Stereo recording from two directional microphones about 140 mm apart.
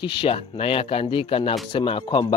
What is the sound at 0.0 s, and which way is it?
Speech, 40° left (ahead or behind).